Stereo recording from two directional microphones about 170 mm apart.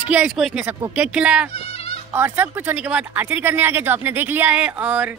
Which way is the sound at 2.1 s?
10° right (ahead or behind).